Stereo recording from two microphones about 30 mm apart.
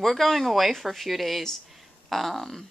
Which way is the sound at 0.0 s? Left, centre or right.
Centre.